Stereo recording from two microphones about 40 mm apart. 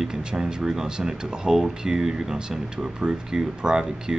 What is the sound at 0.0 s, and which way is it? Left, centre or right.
Speech, centre.